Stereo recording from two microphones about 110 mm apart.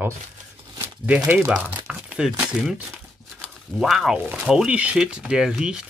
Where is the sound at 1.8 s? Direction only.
5° right (ahead or behind).